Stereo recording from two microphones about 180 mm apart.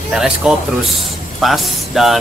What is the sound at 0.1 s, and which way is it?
Speech, 5° right (ahead or behind).